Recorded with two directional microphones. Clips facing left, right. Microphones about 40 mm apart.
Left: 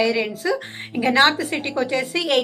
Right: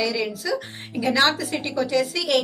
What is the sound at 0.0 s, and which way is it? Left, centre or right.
A woman's voice, left.